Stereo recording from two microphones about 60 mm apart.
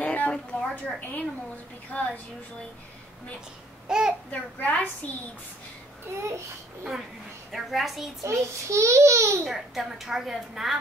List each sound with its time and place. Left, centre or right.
0.0 s a sound: left
1.9 s a woman's voice: left
3.8 s speech: centre
4.3 s a woman's voice: left
7.5 s a woman's voice: centre
8.2 s a child's voice: right
9.5 s a woman's voice: centre